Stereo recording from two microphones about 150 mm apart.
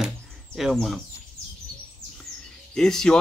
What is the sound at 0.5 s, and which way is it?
Speech, centre (ahead or behind).